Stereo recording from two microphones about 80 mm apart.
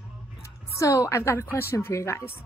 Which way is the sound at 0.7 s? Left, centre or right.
Left.